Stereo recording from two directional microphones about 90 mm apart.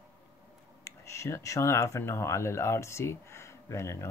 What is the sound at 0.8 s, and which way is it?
Speech, 35° left (ahead or behind).